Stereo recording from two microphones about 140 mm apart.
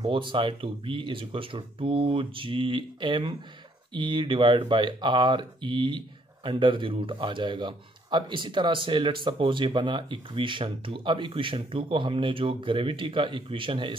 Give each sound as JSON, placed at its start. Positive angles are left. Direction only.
{"t": 0.0, "sound": "speech", "side_deg": -35}